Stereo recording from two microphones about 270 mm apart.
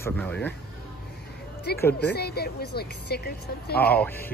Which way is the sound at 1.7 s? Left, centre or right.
Left.